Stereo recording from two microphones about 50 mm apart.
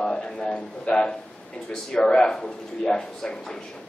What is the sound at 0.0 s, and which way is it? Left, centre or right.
A man's voice, centre.